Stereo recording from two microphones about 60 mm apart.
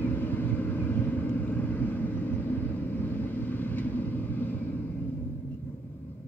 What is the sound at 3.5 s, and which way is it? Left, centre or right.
Vehicle, left.